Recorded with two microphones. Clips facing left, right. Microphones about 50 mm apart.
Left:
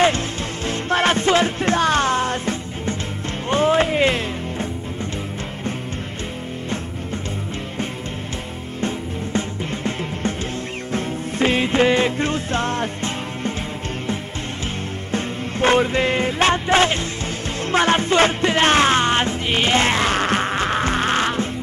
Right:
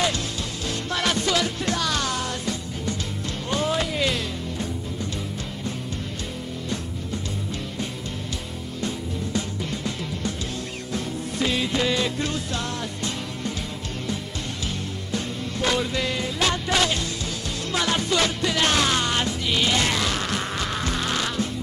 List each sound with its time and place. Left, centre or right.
0.7 s music: left
8.8 s music: left
15.0 s music: left